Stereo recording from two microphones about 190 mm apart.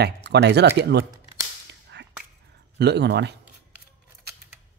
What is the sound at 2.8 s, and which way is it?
Speech, 65° right (ahead or behind).